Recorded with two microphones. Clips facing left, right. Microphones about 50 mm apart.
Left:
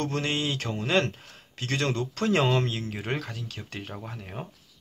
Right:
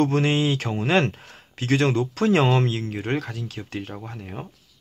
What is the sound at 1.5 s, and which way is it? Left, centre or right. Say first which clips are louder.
Speech: right 7 dB; centre.